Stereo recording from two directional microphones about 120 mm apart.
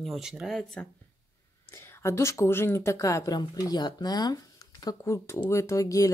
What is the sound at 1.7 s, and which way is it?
Speech, 20° left (ahead or behind).